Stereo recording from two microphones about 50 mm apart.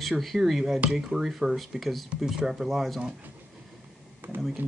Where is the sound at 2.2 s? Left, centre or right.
Centre.